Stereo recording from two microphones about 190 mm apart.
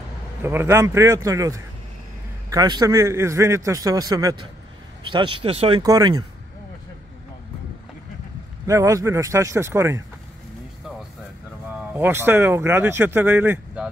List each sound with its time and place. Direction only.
0.4 s speech: 10° right (ahead or behind)
2.5 s speech: 20° right (ahead or behind)
8.6 s speech: 15° right (ahead or behind)
11.9 s speech: 10° right (ahead or behind)